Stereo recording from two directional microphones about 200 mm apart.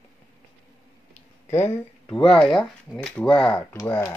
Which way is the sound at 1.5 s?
10° left (ahead or behind).